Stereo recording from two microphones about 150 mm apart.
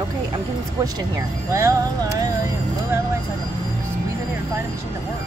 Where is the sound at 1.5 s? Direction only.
20° right (ahead or behind).